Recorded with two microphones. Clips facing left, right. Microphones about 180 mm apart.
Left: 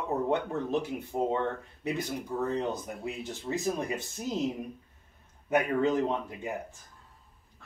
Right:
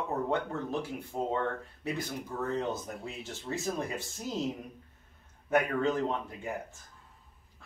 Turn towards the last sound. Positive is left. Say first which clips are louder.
# left 2 dB
turn(degrees=15)  # may be behind; listen again after turning